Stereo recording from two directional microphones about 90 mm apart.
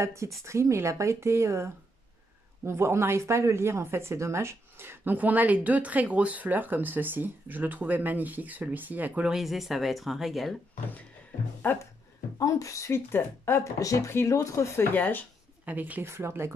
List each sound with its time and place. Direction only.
0.0 s speech: 35° right (ahead or behind); by 9.3 s 20° right (ahead or behind)
9.3 s speech: centre (ahead or behind)
11.6 s speech: 20° left (ahead or behind)
12.4 s speech: 40° left (ahead or behind)
13.7 s speech: 40° left (ahead or behind)
15.0 s speech: 20° left (ahead or behind)
15.6 s speech: 20° right (ahead or behind)